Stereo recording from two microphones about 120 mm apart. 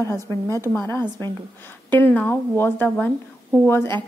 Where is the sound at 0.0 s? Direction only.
25° left (ahead or behind).